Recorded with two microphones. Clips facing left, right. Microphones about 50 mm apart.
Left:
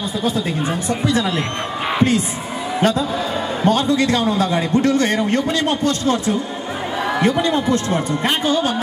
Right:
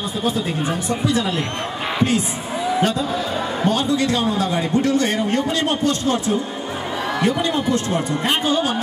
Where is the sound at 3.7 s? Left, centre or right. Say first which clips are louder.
Left 4 dB; left.